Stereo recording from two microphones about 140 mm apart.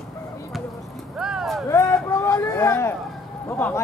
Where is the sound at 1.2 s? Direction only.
5° right (ahead or behind).